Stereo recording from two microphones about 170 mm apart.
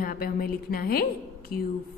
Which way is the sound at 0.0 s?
60° left (ahead or behind).